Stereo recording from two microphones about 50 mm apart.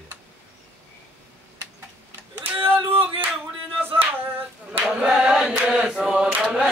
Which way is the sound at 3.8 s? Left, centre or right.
Right.